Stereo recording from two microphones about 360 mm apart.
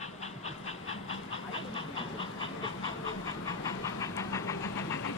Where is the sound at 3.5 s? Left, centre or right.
Centre.